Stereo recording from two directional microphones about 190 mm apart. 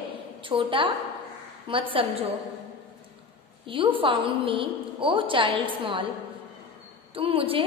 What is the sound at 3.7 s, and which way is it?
A woman's voice, 25° right (ahead or behind).